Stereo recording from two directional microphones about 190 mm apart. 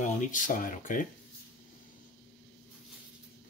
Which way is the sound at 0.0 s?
40° left (ahead or behind).